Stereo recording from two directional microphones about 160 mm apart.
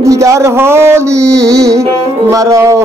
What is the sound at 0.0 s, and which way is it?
Music, 20° right (ahead or behind).